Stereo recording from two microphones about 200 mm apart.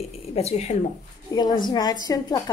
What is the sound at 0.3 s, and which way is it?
Speech, 30° left (ahead or behind).